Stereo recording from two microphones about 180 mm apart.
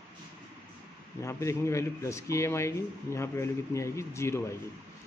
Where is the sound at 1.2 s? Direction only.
15° left (ahead or behind).